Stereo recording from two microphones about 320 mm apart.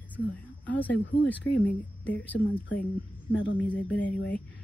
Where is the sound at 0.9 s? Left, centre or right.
Left.